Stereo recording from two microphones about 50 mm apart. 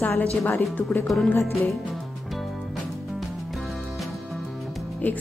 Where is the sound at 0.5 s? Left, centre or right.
Left.